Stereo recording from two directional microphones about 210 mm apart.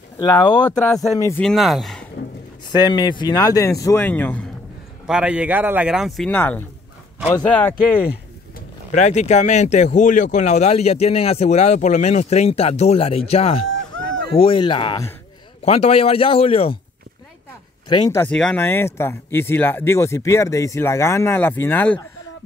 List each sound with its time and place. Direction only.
0.2 s a man's voice: 20° left (ahead or behind)
1.2 s speech: 5° left (ahead or behind)
2.7 s speech: 20° left (ahead or behind)
5.0 s speech: 5° right (ahead or behind)
8.1 s speech: 40° left (ahead or behind)
14.0 s a sound: 55° right (ahead or behind)
14.3 s a man's voice: 25° left (ahead or behind)
17.8 s a man's voice: 20° left (ahead or behind)
18.2 s speech: 5° left (ahead or behind)